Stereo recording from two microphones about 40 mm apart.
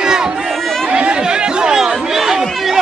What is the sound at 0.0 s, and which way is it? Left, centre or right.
Run, centre.